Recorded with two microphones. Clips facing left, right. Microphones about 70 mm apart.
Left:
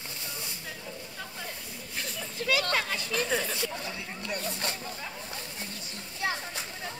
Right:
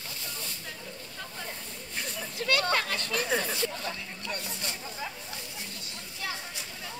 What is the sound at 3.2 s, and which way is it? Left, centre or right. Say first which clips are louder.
Speech: right 1 dB; centre.